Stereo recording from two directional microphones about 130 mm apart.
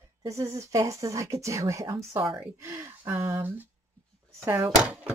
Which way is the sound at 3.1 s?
20° right (ahead or behind).